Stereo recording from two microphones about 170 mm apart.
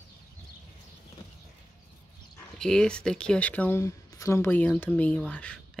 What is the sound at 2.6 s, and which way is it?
Speech, 5° left (ahead or behind).